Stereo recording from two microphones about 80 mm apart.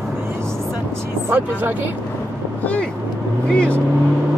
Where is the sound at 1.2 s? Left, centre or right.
Right.